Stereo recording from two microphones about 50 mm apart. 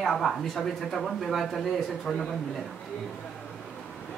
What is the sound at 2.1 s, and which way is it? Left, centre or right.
Speech, centre.